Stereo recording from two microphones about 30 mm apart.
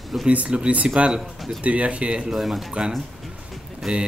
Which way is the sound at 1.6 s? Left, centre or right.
Right.